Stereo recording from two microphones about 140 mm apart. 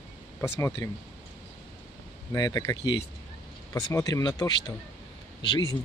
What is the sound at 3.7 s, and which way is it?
Speech, 25° left (ahead or behind).